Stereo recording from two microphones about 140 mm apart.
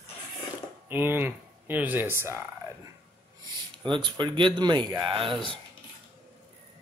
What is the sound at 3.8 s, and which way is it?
Speech, 35° right (ahead or behind).